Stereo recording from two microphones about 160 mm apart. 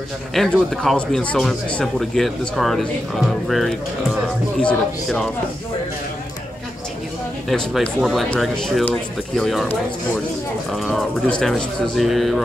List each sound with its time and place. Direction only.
0.3 s a man's voice: centre (ahead or behind)
7.4 s a man's voice: 5° left (ahead or behind)
10.7 s a man's voice: centre (ahead or behind)